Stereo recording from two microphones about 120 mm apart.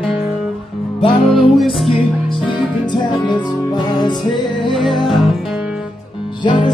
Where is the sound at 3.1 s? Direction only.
40° left (ahead or behind).